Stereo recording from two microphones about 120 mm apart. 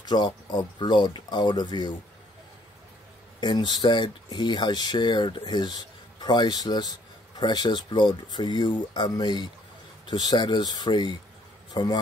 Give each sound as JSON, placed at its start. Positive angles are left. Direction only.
{"t": 0.0, "sound": "speech", "side_deg": 35}
{"t": 3.3, "sound": "speech", "side_deg": 40}